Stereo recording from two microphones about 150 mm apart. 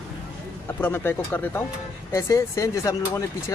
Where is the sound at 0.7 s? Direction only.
15° left (ahead or behind).